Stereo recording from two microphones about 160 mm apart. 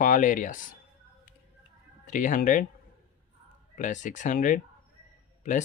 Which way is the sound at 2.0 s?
55° left (ahead or behind).